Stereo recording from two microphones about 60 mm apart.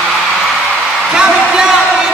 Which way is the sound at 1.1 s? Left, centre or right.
Centre.